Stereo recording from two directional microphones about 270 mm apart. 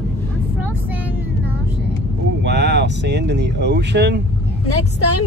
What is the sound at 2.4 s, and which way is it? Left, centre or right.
Speech, right.